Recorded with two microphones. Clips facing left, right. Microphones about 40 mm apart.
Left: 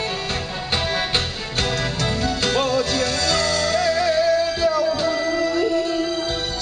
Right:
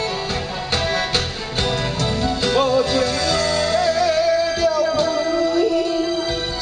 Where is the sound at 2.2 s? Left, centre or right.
Centre.